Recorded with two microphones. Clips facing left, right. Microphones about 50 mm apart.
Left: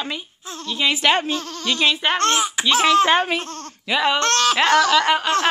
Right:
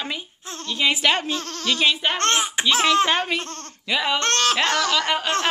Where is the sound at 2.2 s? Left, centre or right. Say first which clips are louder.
Left 2 dB; right.